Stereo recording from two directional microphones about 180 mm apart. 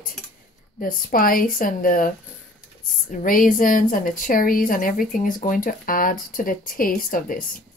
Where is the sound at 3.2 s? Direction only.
50° left (ahead or behind).